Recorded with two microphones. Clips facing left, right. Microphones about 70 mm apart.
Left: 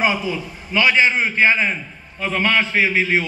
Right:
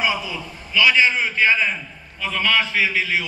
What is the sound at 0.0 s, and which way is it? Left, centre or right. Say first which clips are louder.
A man's voice: left 3 dB; left.